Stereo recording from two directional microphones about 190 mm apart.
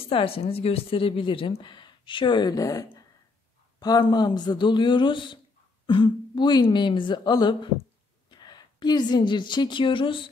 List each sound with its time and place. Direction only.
0.1 s a woman's voice: 30° left (ahead or behind)